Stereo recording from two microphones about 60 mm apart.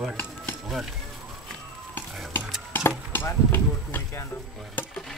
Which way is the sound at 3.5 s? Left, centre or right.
Left.